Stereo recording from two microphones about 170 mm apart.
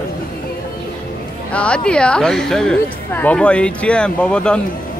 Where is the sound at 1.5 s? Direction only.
5° left (ahead or behind).